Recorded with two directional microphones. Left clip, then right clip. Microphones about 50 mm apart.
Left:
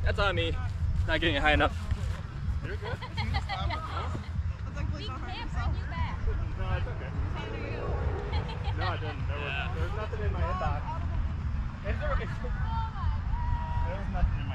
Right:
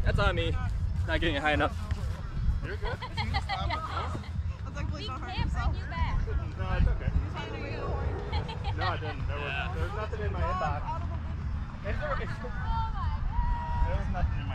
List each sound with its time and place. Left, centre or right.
0.0 s speech: centre
2.8 s vehicle: right
5.3 s speech: right
13.6 s vehicle: right